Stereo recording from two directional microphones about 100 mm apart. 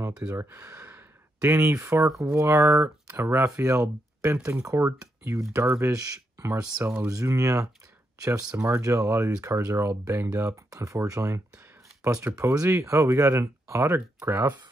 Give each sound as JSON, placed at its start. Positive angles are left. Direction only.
{"t": 0.3, "sound": "speech", "side_deg": -25}
{"t": 6.5, "sound": "speech", "side_deg": -20}
{"t": 7.1, "sound": "speech", "side_deg": -30}